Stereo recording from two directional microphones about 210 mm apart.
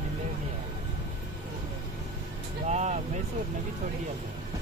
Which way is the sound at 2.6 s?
35° right (ahead or behind).